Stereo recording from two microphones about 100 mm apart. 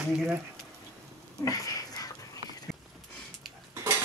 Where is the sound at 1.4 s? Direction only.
35° left (ahead or behind).